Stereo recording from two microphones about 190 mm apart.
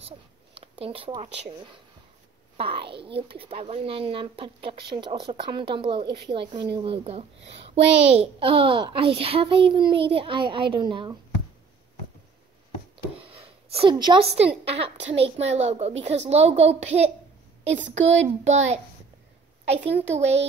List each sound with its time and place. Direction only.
0.6 s speech: 30° right (ahead or behind)
2.5 s a child's voice: 30° right (ahead or behind)
13.2 s a sound: 30° right (ahead or behind)
14.6 s a woman's voice: 30° right (ahead or behind)
18.2 s a woman's voice: 35° right (ahead or behind)
19.9 s a woman's voice: 35° right (ahead or behind)